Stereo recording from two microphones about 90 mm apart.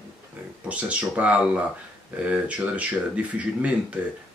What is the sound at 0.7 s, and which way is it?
Speech, 15° right (ahead or behind).